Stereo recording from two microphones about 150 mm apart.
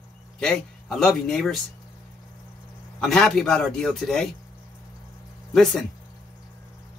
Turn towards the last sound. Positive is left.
turn(degrees=5)  # may be behind; listen again after turning